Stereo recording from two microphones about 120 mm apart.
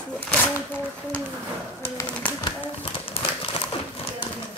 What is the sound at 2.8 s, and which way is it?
Crumpling, 50° left (ahead or behind).